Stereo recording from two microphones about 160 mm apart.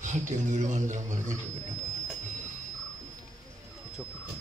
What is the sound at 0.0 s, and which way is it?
Mantra, 50° right (ahead or behind).